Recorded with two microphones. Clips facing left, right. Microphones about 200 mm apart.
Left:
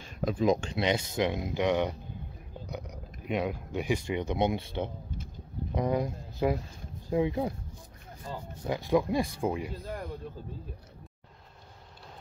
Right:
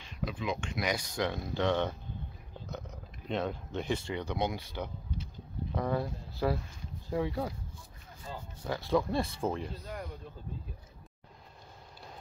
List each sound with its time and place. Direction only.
0.0 s speech: 45° left (ahead or behind); by 7.5 s 20° left (ahead or behind)
8.6 s speech: 15° left (ahead or behind)